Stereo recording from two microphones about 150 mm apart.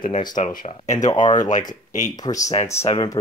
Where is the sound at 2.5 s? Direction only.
45° left (ahead or behind).